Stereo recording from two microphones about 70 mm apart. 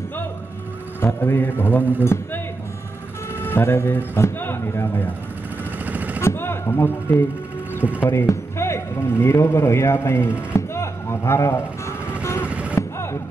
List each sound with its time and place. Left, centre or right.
1.0 s a man's voice: left
3.3 s speech: left
5.9 s vehicle: right
6.2 s a man's voice: left
12.2 s vehicle: left
12.4 s vehicle: centre
12.7 s gunshot: left